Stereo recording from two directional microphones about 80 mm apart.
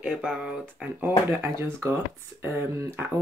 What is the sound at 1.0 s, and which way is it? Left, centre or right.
Speech, right.